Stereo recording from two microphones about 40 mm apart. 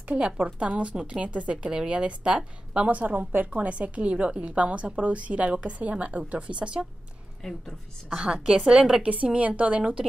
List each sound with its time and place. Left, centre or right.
0.6 s a woman's voice: right
2.9 s a woman's voice: right
7.4 s a woman's voice: centre
8.2 s speech: right
9.0 s a woman's voice: right